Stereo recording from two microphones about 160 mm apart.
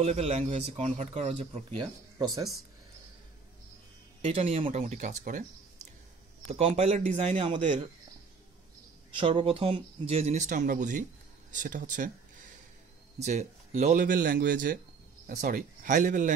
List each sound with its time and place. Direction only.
0.0 s speech: 40° right (ahead or behind)
1.8 s speech: 25° right (ahead or behind)
4.2 s speech: 40° right (ahead or behind)
6.5 s speech: 40° right (ahead or behind)
9.1 s speech: 35° right (ahead or behind); by 12.1 s 55° right (ahead or behind)
13.2 s speech: 45° right (ahead or behind)